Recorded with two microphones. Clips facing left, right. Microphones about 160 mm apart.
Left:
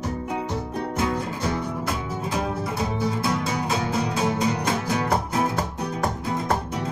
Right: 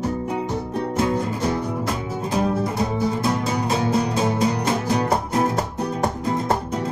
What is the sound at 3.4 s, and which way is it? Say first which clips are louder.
Music: right 3 dB; 35° right (ahead or behind).